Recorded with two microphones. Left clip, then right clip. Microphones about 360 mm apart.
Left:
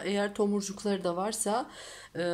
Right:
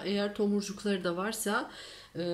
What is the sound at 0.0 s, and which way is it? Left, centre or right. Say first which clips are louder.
Speech: left 2 dB; centre.